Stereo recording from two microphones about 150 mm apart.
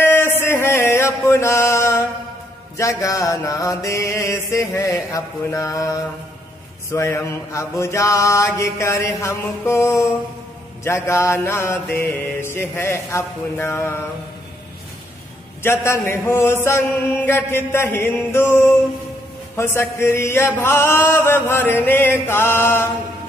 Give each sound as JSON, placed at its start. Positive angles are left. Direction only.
{"t": 0.0, "sound": "chant", "side_deg": 15}
{"t": 2.8, "sound": "mantra", "side_deg": 20}
{"t": 11.1, "sound": "chant", "side_deg": 20}
{"t": 15.6, "sound": "chant", "side_deg": 15}